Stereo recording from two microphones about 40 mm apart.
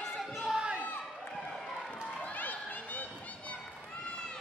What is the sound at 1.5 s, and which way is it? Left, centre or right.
Run, centre.